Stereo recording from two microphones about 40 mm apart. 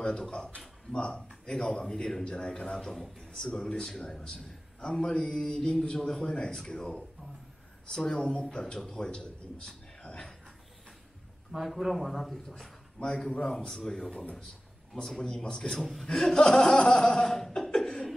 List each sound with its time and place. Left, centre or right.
0.0 s a man's voice: centre
8.0 s a man's voice: centre
8.9 s a sound: centre
11.6 s speech: centre
12.2 s a man's voice: centre
13.0 s a man's voice: left
15.8 s speech: centre
16.1 s a man's voice: centre
17.5 s chuckle: left